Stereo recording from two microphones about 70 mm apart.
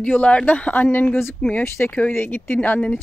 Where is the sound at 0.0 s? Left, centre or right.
Centre.